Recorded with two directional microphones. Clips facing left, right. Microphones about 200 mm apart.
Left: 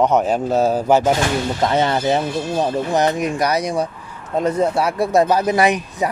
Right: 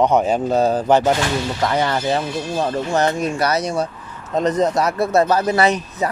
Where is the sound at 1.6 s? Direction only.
20° left (ahead or behind).